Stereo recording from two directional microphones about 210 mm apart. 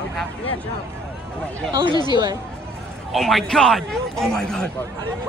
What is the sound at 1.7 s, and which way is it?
Speech, 20° right (ahead or behind).